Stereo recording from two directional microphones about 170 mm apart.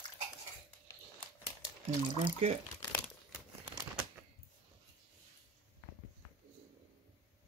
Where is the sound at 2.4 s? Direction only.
40° right (ahead or behind).